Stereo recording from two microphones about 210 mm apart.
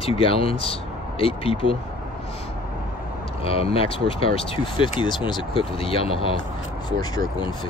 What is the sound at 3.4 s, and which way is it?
Speech, 25° left (ahead or behind).